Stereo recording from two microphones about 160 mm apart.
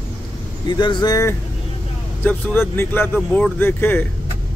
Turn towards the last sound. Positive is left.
turn(degrees=10)  # may be behind; listen again after turning